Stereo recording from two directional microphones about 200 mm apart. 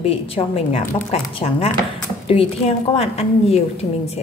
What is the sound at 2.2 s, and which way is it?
A woman's voice, 30° left (ahead or behind).